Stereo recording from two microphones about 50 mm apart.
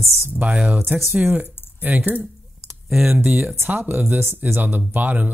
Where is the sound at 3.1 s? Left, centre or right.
Right.